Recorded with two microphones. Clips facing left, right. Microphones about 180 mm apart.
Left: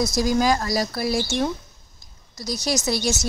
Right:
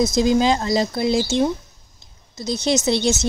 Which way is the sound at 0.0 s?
20° right (ahead or behind).